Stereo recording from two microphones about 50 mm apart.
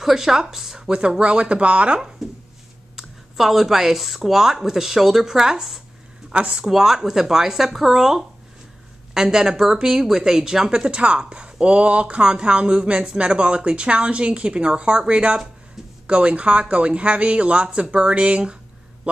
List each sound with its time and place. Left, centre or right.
0.0 s speech: centre; by 2.0 s right
2.2 s a sound: centre
3.0 s speech: centre
6.3 s speech: centre
6.7 s speech: centre